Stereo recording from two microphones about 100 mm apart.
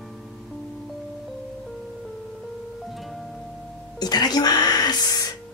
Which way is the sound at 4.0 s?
45° left (ahead or behind).